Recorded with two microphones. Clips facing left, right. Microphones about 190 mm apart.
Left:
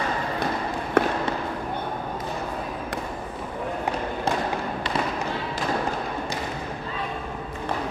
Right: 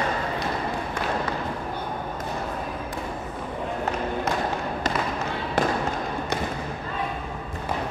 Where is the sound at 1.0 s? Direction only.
65° left (ahead or behind).